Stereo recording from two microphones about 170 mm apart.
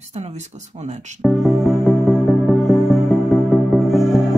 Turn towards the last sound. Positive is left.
turn(degrees=0)  # may be behind; listen again after turning